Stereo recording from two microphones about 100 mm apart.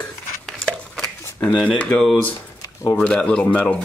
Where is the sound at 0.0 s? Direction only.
10° left (ahead or behind).